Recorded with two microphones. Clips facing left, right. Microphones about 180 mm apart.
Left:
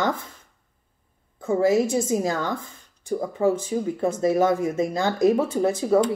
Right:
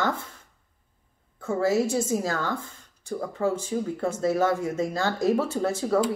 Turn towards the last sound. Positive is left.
turn(degrees=20)  # may be behind; listen again after turning